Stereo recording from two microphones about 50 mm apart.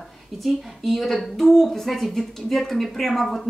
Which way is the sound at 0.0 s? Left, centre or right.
Centre.